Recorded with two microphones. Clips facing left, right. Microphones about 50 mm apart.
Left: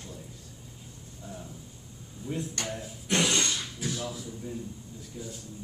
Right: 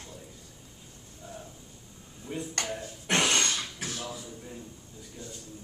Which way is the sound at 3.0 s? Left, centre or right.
Right.